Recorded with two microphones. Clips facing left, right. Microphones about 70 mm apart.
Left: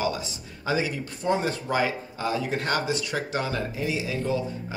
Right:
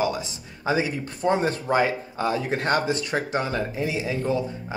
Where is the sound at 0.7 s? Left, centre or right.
Right.